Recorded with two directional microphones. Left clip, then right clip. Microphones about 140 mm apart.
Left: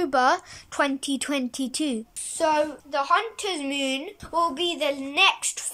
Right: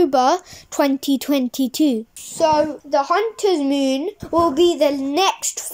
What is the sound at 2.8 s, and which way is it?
Speech, 45° right (ahead or behind).